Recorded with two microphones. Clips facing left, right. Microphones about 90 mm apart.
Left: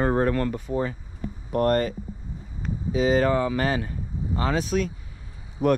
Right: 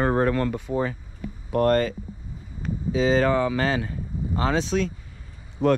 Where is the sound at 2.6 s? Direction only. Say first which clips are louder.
Right 2 dB; centre (ahead or behind).